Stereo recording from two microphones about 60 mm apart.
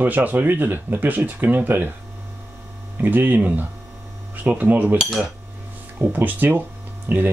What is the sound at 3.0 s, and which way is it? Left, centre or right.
Speech, right.